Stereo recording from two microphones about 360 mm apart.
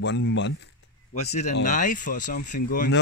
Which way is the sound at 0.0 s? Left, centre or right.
Left.